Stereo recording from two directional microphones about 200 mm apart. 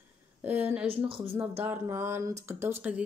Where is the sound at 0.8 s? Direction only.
25° right (ahead or behind).